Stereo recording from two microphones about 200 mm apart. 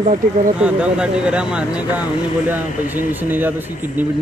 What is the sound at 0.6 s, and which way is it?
Speech, 5° right (ahead or behind).